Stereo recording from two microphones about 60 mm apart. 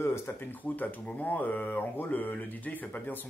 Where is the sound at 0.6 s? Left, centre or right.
Left.